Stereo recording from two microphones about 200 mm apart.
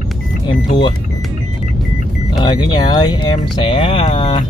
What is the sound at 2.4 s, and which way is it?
Speech, 20° left (ahead or behind).